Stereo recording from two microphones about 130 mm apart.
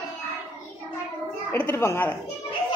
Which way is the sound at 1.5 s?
15° left (ahead or behind).